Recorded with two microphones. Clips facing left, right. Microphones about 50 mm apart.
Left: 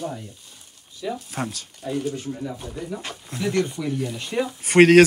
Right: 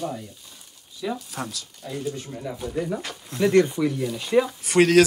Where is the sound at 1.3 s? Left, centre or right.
Left.